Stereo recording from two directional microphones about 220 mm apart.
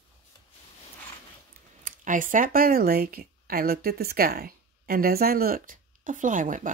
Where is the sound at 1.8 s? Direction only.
35° right (ahead or behind).